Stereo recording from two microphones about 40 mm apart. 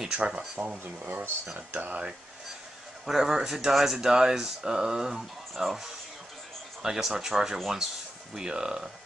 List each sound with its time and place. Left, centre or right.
0.6 s speech: right
1.0 s speech: right
1.7 s speech: right
3.1 s speech: centre
8.4 s speech: right